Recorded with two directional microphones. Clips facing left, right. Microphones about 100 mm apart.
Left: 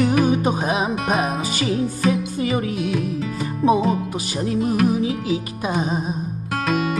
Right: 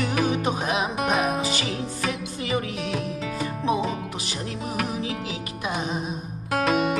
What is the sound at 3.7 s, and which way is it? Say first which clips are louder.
Music: left 7 dB; 40° left (ahead or behind).